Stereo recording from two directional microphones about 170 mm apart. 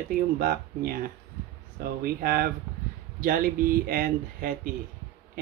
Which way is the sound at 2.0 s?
55° right (ahead or behind).